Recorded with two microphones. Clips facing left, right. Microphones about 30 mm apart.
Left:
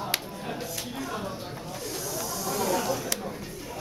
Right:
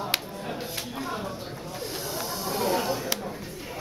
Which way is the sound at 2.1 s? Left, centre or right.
Right.